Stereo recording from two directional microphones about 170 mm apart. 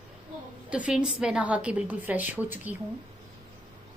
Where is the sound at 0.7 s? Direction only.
5° right (ahead or behind).